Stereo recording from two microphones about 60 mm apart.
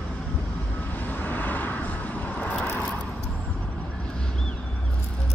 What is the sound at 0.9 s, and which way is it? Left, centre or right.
Vehicle, left.